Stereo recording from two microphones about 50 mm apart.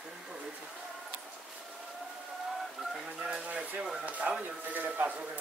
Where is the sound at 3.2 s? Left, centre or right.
Right.